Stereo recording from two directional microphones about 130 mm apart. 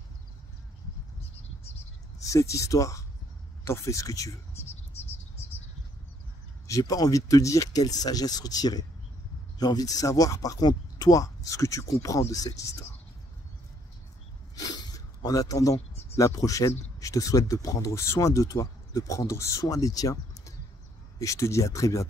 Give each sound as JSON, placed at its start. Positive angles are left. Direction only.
{"t": 2.1, "sound": "speech", "side_deg": 25}
{"t": 6.7, "sound": "speech", "side_deg": 30}
{"t": 14.5, "sound": "speech", "side_deg": 30}